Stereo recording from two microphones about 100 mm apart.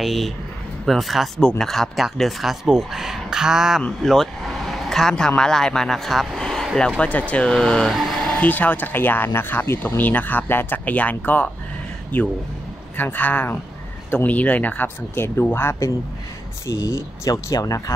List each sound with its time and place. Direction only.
0.0 s speech: centre (ahead or behind); by 17.9 s 35° left (ahead or behind)